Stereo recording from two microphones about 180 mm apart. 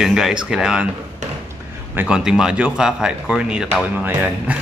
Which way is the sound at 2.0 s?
5° right (ahead or behind).